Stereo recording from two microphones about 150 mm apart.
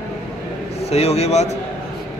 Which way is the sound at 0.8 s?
45° left (ahead or behind).